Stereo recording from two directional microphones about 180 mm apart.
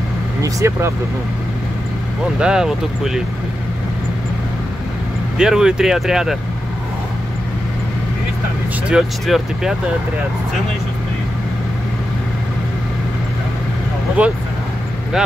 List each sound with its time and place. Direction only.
0.4 s speech: 15° right (ahead or behind)
2.3 s speech: 5° right (ahead or behind)
5.4 s speech: 5° right (ahead or behind)
8.8 s speech: centre (ahead or behind)
14.2 s speech: 5° right (ahead or behind)